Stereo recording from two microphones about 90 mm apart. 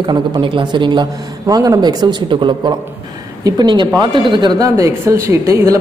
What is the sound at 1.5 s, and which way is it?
A man's voice, 40° right (ahead or behind).